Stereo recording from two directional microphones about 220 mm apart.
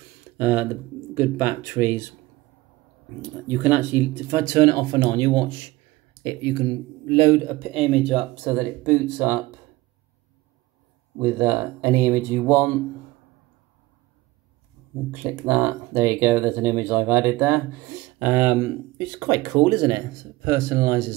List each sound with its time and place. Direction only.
0.4 s speech: 10° right (ahead or behind)
3.2 s speech: 10° right (ahead or behind); by 7.3 s 25° right (ahead or behind)
7.6 s speech: centre (ahead or behind)
11.1 s speech: 10° right (ahead or behind)
15.0 s speech: 10° right (ahead or behind)